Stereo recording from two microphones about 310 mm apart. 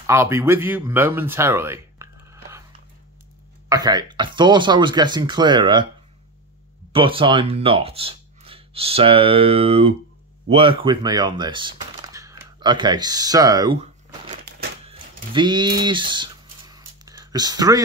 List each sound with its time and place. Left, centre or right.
0.0 s speech: centre
3.6 s speech: centre
6.9 s speech: centre
14.9 s a sound: centre